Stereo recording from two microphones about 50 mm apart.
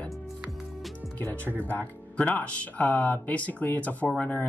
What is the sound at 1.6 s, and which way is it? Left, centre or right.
Speech, left.